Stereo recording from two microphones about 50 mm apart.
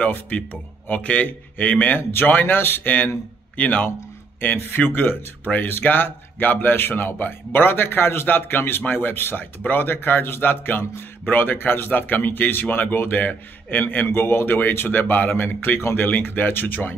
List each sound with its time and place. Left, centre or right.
0.0 s speech: left
2.0 s a man's voice: left
3.5 s a man's voice: left